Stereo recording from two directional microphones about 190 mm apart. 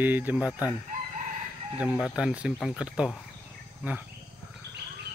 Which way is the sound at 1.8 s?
5° right (ahead or behind).